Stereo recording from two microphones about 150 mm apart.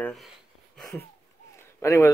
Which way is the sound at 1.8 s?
20° left (ahead or behind).